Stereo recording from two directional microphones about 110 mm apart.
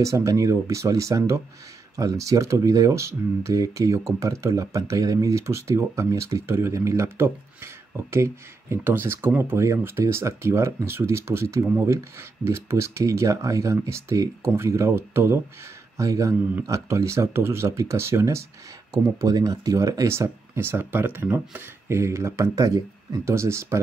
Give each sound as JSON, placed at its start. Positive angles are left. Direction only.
{"t": 0.0, "sound": "speech", "side_deg": -30}